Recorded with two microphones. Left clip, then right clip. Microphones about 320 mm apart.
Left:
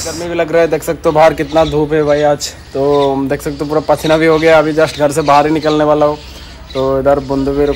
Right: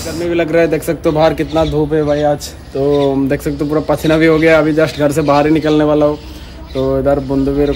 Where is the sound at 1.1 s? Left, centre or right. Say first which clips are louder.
Left 4 dB; centre.